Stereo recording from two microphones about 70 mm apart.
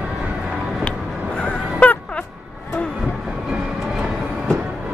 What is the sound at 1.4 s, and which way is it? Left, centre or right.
Music, left.